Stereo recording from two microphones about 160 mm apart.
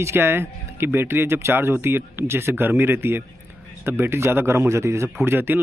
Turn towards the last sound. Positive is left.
turn(degrees=-15)  # may be behind; listen again after turning